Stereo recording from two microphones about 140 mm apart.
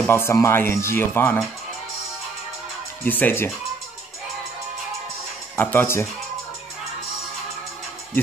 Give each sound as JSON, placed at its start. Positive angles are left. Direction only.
{"t": 0.0, "sound": "speech", "side_deg": 15}
{"t": 3.0, "sound": "speech", "side_deg": 15}
{"t": 5.6, "sound": "speech", "side_deg": 15}